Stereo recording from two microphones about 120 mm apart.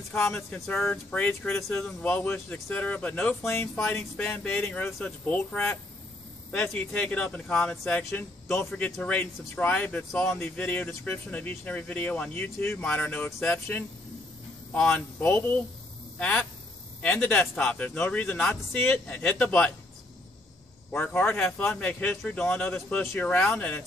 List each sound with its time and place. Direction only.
0.1 s speech: 15° left (ahead or behind)
3.7 s speech: 5° left (ahead or behind)
20.9 s speech: 15° left (ahead or behind)